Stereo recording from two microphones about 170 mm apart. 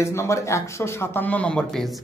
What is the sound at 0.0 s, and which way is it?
Speech, 15° left (ahead or behind).